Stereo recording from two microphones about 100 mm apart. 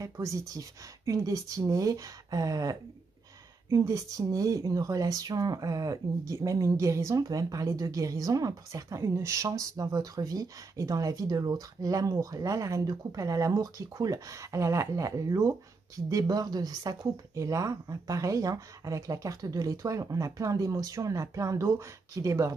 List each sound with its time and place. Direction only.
0.0 s speech: 30° right (ahead or behind)